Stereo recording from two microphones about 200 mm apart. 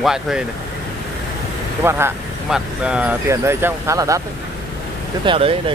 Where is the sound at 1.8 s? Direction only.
10° right (ahead or behind).